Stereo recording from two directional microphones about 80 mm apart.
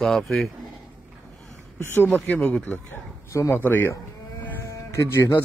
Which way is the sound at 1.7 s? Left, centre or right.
Left.